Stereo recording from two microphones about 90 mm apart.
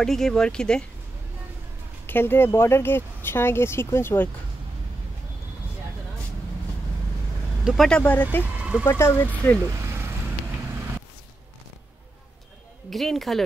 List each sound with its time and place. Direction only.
0.0 s speech: 5° left (ahead or behind)
2.0 s speech: 25° left (ahead or behind)
7.6 s speech: centre (ahead or behind)
8.0 s speech: 20° left (ahead or behind)
8.5 s a sound: 10° right (ahead or behind)
8.8 s speech: 30° left (ahead or behind)
9.3 s speech: 20° left (ahead or behind)
9.7 s vehicle: 30° right (ahead or behind)
12.9 s speech: centre (ahead or behind)